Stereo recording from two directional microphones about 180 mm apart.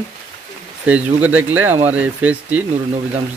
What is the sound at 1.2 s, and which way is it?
Speech, 10° right (ahead or behind).